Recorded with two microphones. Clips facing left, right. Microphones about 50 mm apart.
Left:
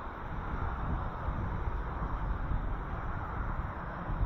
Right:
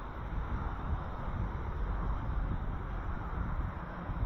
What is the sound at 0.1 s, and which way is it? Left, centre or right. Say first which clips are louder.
Vehicle: left 3 dB; centre.